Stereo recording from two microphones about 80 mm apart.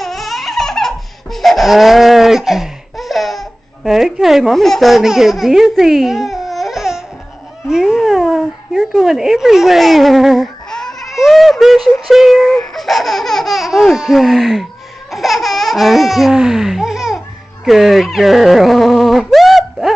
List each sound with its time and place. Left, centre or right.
0.0 s laughter: centre
7.6 s speech: centre
11.1 s synthetic singing: centre
12.7 s laughter: centre
17.6 s speech: centre